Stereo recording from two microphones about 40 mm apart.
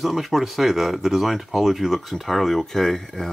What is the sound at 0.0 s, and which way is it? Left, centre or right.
Speech, centre.